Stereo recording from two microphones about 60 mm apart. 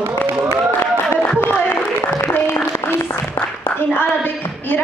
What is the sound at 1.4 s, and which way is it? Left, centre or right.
Applause, left.